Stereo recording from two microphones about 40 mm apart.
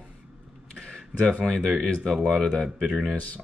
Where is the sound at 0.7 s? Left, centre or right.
Centre.